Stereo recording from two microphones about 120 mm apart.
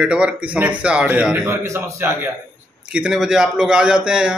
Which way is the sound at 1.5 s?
20° right (ahead or behind).